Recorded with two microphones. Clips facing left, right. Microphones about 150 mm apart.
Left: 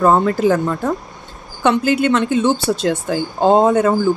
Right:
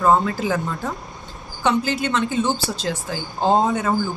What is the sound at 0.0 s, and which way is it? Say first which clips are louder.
Speech: left 5 dB; 50° left (ahead or behind).